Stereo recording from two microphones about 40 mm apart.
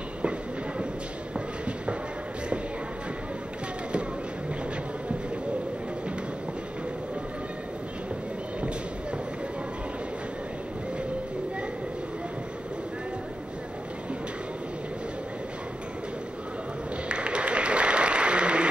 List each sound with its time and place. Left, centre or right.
17.1 s applause: right